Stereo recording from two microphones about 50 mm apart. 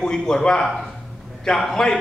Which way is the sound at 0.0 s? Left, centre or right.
Centre.